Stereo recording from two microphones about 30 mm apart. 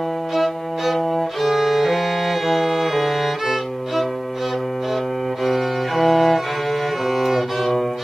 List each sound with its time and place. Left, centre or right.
1.4 s music: centre
5.4 s music: centre